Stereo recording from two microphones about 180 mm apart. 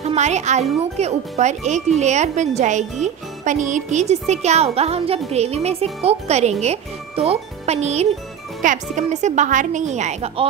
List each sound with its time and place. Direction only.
0.0 s speech: 40° right (ahead or behind)